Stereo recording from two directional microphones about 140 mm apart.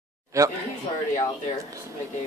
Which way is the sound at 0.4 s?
20° right (ahead or behind).